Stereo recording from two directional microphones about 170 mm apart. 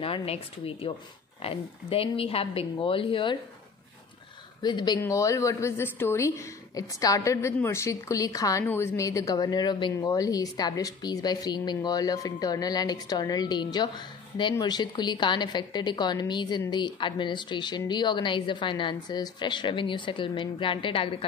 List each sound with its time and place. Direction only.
0.0 s speech: 35° left (ahead or behind)
4.6 s a woman's voice: 25° left (ahead or behind)